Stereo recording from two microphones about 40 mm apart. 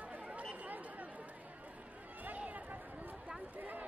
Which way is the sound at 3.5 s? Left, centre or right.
Right.